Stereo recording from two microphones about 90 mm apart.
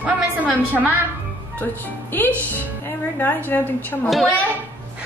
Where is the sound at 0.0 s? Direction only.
15° right (ahead or behind).